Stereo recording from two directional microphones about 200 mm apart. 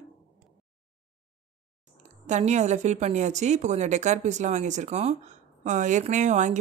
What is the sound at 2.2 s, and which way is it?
Speech, 35° right (ahead or behind).